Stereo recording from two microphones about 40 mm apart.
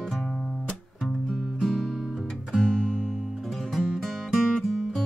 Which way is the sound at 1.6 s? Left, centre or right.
Centre.